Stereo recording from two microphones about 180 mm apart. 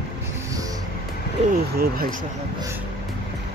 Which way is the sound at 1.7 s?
60° right (ahead or behind).